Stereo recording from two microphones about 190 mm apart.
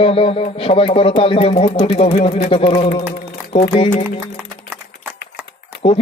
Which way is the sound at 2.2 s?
30° left (ahead or behind).